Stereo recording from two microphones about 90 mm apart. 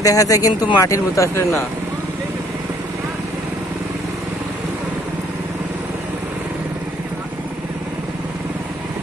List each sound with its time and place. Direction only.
0.0 s speech: 40° left (ahead or behind)